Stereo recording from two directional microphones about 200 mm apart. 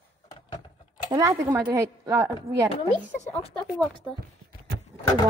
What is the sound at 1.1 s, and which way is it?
Speech, 15° right (ahead or behind).